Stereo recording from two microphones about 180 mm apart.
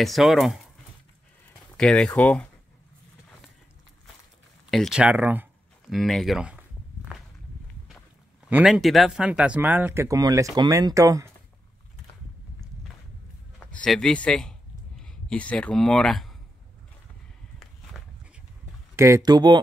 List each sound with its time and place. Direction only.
0.0 s speech: centre (ahead or behind)
1.8 s speech: 5° left (ahead or behind)
4.6 s a sound: centre (ahead or behind)
5.9 s walk: centre (ahead or behind)
8.5 s speech: 5° right (ahead or behind)
13.7 s speech: 5° left (ahead or behind)
18.9 s speech: 15° right (ahead or behind)